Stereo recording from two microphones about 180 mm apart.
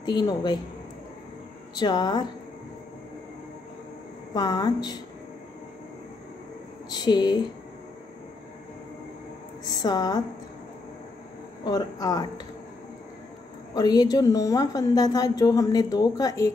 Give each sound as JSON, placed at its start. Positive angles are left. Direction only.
{"t": 0.0, "sound": "a woman's voice", "side_deg": 25}
{"t": 1.8, "sound": "a woman's voice", "side_deg": 25}
{"t": 4.3, "sound": "a woman's voice", "side_deg": 20}
{"t": 6.9, "sound": "a woman's voice", "side_deg": 25}
{"t": 9.7, "sound": "a woman's voice", "side_deg": 20}
{"t": 11.6, "sound": "a woman's voice", "side_deg": 20}
{"t": 13.7, "sound": "a woman's voice", "side_deg": 20}